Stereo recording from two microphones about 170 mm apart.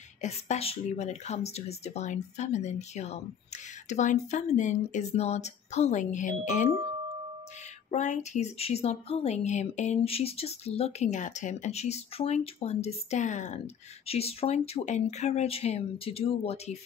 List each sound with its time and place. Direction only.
0.2 s speech: 40° left (ahead or behind)
7.9 s speech: 45° left (ahead or behind)